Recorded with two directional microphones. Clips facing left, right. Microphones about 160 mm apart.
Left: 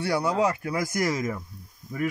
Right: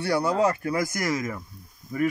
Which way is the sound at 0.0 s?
15° left (ahead or behind).